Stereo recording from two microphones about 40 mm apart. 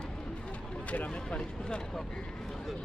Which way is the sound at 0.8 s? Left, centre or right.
Left.